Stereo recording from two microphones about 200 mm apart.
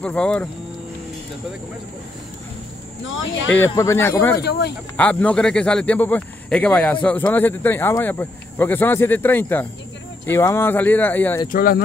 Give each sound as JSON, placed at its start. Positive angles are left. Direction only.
{"t": 0.0, "sound": "speech", "side_deg": 5}
{"t": 3.2, "sound": "speech", "side_deg": 75}
{"t": 3.7, "sound": "a man's voice", "side_deg": 15}
{"t": 4.4, "sound": "speech", "side_deg": 55}
{"t": 4.9, "sound": "a man's voice", "side_deg": 5}
{"t": 11.4, "sound": "speech", "side_deg": 45}